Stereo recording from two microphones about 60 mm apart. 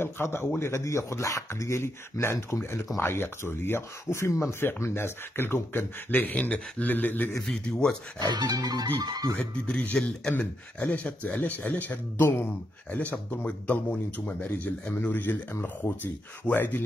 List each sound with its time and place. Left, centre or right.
0.0 s a man's voice: left
7.4 s speech: centre
8.5 s speech: right
9.4 s speech: left
12.2 s speech: left